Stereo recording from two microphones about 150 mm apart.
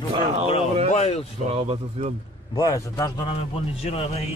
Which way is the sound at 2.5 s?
25° left (ahead or behind).